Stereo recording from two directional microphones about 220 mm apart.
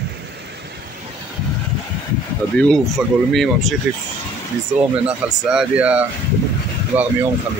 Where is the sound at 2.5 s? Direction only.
5° left (ahead or behind).